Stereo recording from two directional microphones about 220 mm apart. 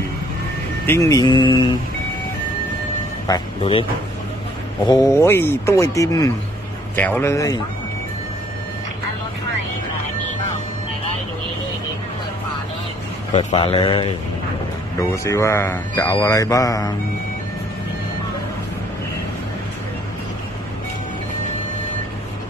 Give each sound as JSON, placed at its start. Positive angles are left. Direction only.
{"t": 0.8, "sound": "music", "side_deg": 15}
{"t": 3.3, "sound": "speech", "side_deg": 20}
{"t": 4.8, "sound": "speech", "side_deg": 15}
{"t": 13.3, "sound": "music", "side_deg": 30}
{"t": 15.2, "sound": "speech", "side_deg": 15}